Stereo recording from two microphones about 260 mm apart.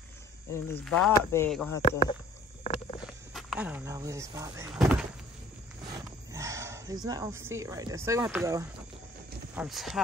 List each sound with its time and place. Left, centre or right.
0.5 s speech: centre
1.8 s speech: left
2.6 s rowboat: left
3.3 s speech: centre
4.7 s a sound: centre
6.3 s speech: centre